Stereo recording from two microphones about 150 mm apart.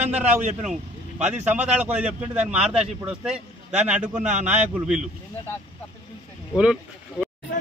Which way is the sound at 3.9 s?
50° right (ahead or behind).